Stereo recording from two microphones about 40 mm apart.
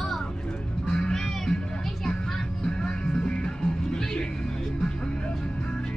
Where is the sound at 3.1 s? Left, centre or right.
Left.